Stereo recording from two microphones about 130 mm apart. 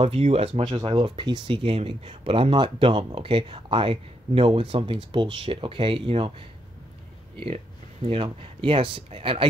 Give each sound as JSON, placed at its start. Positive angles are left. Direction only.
{"t": 0.0, "sound": "speech", "side_deg": -50}
{"t": 0.8, "sound": "speech", "side_deg": -40}
{"t": 8.0, "sound": "speech", "side_deg": -45}